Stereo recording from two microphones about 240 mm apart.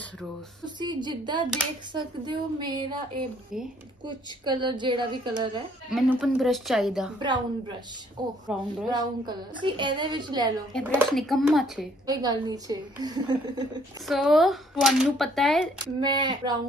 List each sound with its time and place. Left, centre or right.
0.7 s a woman's voice: centre
5.9 s speech: centre
7.2 s a woman's voice: centre
8.5 s speech: centre
8.9 s a woman's voice: centre
10.7 s speech: centre
12.1 s a woman's voice: centre
14.0 s speech: centre
15.8 s a woman's voice: centre